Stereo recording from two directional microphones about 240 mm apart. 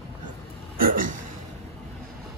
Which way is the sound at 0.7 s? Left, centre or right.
Right.